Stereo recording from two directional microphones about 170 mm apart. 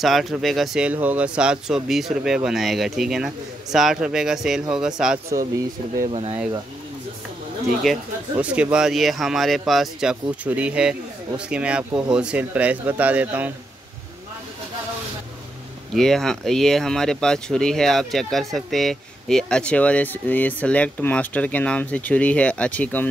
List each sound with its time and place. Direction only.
0.0 s speech: centre (ahead or behind)
6.1 s speech: 35° right (ahead or behind)
7.8 s a man's voice: 5° right (ahead or behind)
15.9 s speech: centre (ahead or behind)